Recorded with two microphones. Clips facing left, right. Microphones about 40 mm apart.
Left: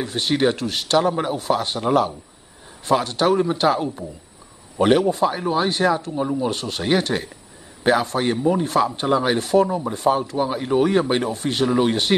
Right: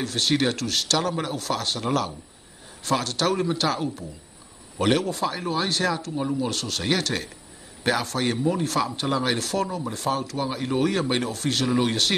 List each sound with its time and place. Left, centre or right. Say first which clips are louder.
0.0 s speech: left 3 dB; centre